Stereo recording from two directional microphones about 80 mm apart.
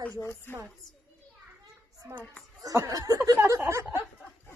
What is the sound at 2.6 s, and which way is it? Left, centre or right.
Speech, right.